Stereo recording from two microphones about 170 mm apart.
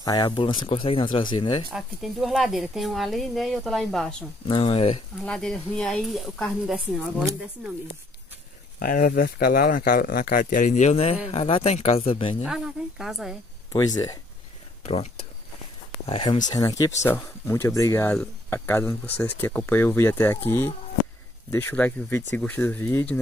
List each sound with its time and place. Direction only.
0.0 s speech: 25° left (ahead or behind)
1.7 s speech: centre (ahead or behind)
4.5 s speech: 30° left (ahead or behind)
5.2 s speech: 5° left (ahead or behind)
8.7 s speech: 55° left (ahead or behind); by 12.4 s 35° left (ahead or behind)
12.4 s speech: 5° right (ahead or behind)
13.7 s speech: 20° left (ahead or behind)
14.9 s speech: 35° left (ahead or behind)
16.1 s speech: 25° left (ahead or behind); by 23.1 s 10° left (ahead or behind)